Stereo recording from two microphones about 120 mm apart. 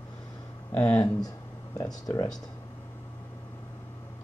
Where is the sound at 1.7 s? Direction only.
30° left (ahead or behind).